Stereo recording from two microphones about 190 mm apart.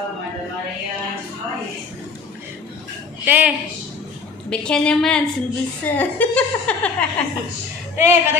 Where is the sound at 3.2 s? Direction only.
10° right (ahead or behind).